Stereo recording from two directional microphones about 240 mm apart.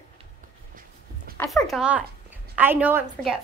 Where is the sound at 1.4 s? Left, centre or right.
Centre.